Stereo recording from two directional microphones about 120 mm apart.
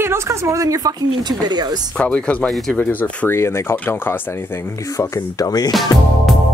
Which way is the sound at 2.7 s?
15° left (ahead or behind).